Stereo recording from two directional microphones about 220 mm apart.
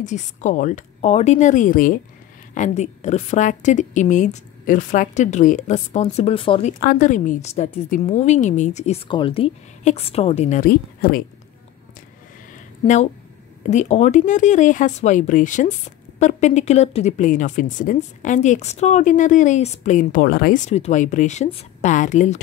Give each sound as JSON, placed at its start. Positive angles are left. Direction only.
{"t": 0.0, "sound": "speech", "side_deg": 35}
{"t": 6.8, "sound": "speech", "side_deg": 40}
{"t": 12.8, "sound": "speech", "side_deg": 35}